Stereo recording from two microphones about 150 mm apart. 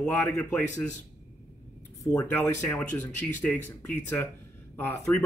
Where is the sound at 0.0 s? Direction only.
10° left (ahead or behind).